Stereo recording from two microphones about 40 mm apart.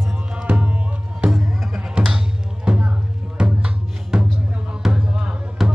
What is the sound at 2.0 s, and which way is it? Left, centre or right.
Music, right.